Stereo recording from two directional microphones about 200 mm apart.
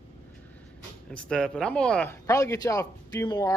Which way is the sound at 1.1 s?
5° left (ahead or behind).